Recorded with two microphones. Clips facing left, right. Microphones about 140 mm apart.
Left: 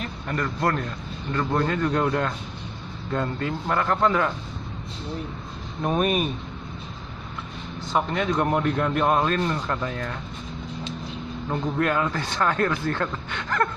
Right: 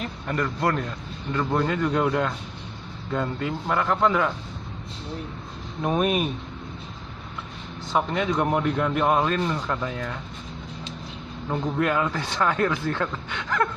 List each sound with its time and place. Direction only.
0.6 s speech: 15° right (ahead or behind)
5.8 s a man's voice: 5° right (ahead or behind)
8.1 s a man's voice: 10° right (ahead or behind)
11.5 s a man's voice: 10° right (ahead or behind)